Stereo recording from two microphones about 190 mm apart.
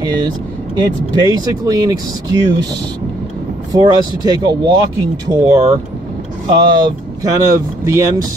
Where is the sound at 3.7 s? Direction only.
20° right (ahead or behind).